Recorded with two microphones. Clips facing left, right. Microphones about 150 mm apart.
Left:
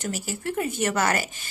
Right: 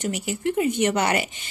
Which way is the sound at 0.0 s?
20° right (ahead or behind).